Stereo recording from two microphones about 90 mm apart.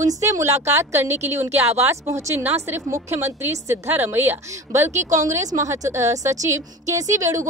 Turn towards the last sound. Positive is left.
turn(degrees=-35)  # may be behind; listen again after turning